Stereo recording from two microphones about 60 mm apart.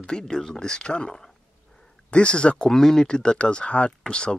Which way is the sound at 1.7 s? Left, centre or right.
Centre.